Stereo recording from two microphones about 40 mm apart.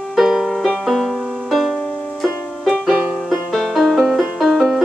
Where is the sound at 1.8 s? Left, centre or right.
Left.